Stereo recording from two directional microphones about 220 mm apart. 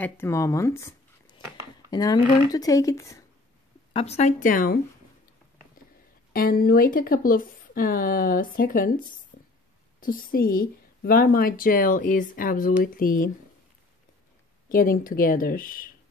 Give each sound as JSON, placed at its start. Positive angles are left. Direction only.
{"t": 0.0, "sound": "speech", "side_deg": 10}
{"t": 3.9, "sound": "a woman's voice", "side_deg": 30}
{"t": 6.3, "sound": "a woman's voice", "side_deg": 40}
{"t": 9.9, "sound": "a woman's voice", "side_deg": 40}
{"t": 14.7, "sound": "a woman's voice", "side_deg": 40}